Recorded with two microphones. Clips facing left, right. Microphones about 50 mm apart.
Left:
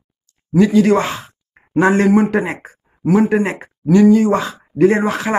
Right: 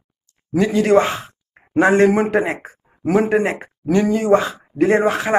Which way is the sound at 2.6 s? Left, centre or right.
Right.